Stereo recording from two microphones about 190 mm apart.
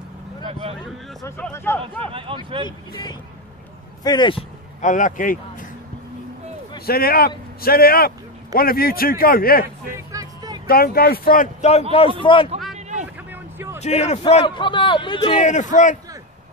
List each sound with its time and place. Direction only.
0.5 s a sound: 30° right (ahead or behind)
1.2 s speech: 15° left (ahead or behind)
1.8 s speech: 30° right (ahead or behind)
2.6 s a man's voice: 20° left (ahead or behind)
4.8 s a man's voice: 45° left (ahead or behind)
6.9 s a man's voice: 50° left (ahead or behind)
9.9 s music: 20° right (ahead or behind)
10.7 s a man's voice: 50° left (ahead or behind)
12.2 s a man's voice: 25° left (ahead or behind)
13.0 s vehicle: 10° right (ahead or behind)
13.8 s speech: 35° left (ahead or behind)
14.4 s a man's voice: 25° left (ahead or behind); by 16.0 s 40° left (ahead or behind)